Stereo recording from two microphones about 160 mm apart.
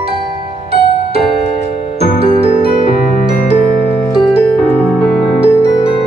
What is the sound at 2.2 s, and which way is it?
Music, 35° right (ahead or behind).